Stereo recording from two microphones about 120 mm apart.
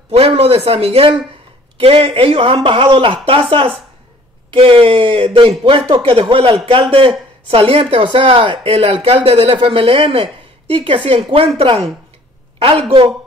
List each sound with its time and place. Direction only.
0.1 s speech: 55° right (ahead or behind)